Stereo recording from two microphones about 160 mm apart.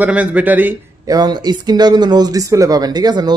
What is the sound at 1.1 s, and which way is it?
Speech, 25° right (ahead or behind).